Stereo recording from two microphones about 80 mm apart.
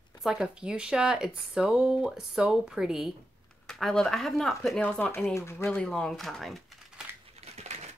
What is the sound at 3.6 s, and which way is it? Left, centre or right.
Speech, centre.